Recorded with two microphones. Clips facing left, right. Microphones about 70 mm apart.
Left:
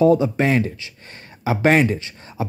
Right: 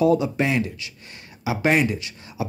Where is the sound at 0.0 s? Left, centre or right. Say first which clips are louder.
Left 4 dB; left.